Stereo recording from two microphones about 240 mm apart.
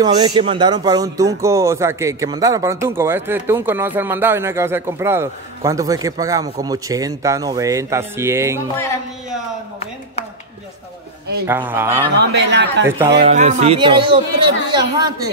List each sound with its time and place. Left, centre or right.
0.0 s speech: centre
11.4 s speech: centre
12.2 s a man's voice: right
13.3 s speech: right